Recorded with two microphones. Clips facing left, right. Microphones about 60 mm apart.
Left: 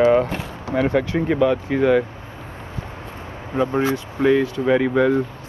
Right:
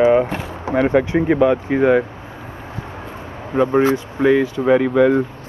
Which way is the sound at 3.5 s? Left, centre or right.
Centre.